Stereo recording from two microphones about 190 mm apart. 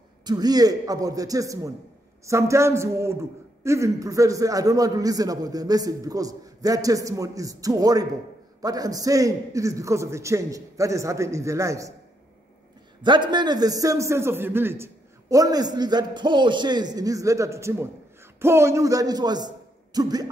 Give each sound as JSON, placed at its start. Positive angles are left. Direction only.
{"t": 0.2, "sound": "a man's voice", "side_deg": -20}
{"t": 13.0, "sound": "a man's voice", "side_deg": -25}